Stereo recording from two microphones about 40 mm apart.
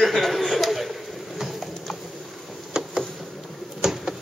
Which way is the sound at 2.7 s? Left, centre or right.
Centre.